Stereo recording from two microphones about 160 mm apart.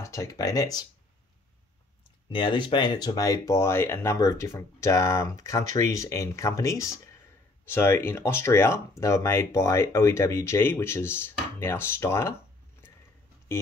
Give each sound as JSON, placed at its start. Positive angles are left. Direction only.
{"t": 0.0, "sound": "speech", "side_deg": 20}
{"t": 2.2, "sound": "speech", "side_deg": 30}